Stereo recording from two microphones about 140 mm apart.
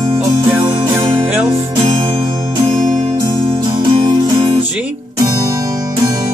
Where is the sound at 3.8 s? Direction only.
35° right (ahead or behind).